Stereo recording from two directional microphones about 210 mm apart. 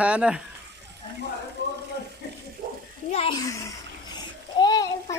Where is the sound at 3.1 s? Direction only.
25° left (ahead or behind).